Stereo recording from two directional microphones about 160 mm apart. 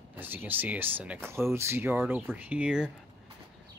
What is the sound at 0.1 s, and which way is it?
Speech, 10° right (ahead or behind).